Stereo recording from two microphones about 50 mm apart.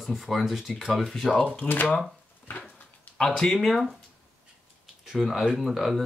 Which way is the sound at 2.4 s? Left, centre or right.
Left.